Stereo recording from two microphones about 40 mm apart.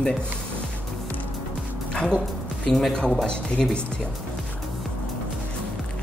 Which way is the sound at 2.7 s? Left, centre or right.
Centre.